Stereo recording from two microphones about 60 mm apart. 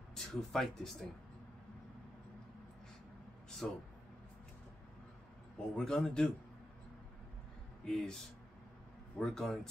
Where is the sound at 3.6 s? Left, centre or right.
Centre.